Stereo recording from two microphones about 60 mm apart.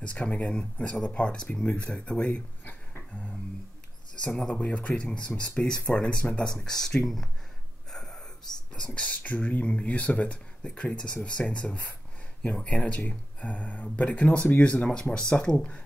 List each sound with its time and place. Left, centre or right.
0.0 s speech: left
4.5 s speech: left
5.3 s speech: left
5.6 s speech: centre
7.9 s gasp: centre
8.7 s speech: left